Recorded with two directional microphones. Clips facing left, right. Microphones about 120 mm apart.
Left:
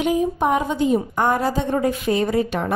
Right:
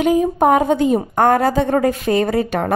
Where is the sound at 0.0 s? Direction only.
50° right (ahead or behind).